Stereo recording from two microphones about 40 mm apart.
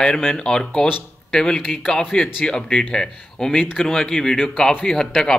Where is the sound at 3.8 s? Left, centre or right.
Centre.